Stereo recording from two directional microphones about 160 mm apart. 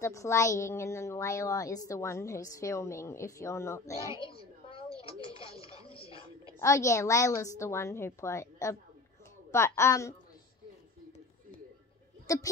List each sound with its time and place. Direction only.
0.0 s a woman's voice: 20° left (ahead or behind)
4.2 s a sound: 35° left (ahead or behind)
5.2 s music: 35° left (ahead or behind)
6.6 s a woman's voice: 20° left (ahead or behind)
12.3 s a woman's voice: 20° left (ahead or behind)